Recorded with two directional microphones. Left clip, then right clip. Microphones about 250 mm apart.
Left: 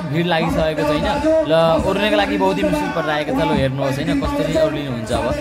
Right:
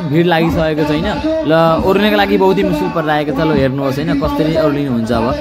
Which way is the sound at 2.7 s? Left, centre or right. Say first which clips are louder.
Right 3 dB; left.